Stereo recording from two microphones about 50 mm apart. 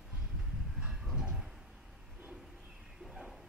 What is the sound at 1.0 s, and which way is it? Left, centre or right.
Train, centre.